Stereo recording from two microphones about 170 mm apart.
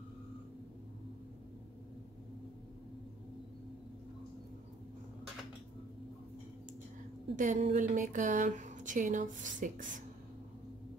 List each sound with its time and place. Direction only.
7.3 s speech: 45° right (ahead or behind)